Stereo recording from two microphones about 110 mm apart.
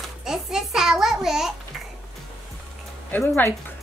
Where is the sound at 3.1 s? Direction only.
15° left (ahead or behind).